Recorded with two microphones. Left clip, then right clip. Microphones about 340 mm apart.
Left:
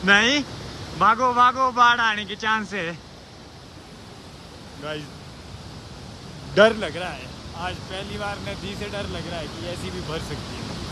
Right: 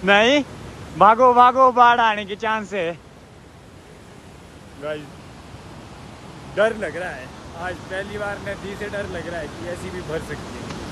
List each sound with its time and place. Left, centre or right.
0.0 s speech: centre
4.8 s speech: centre
6.5 s a man's voice: left
6.8 s speech: centre